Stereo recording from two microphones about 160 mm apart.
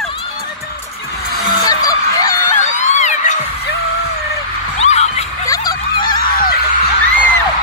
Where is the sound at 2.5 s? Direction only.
50° left (ahead or behind).